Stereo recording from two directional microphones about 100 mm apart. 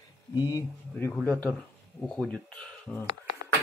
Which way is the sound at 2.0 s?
10° left (ahead or behind).